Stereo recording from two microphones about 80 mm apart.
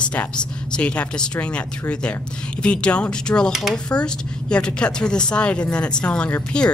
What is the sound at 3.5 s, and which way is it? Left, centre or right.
Speech, centre.